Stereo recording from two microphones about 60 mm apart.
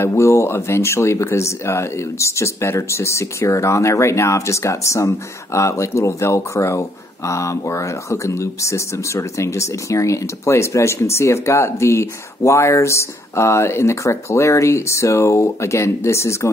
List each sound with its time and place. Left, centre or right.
0.0 s speech: left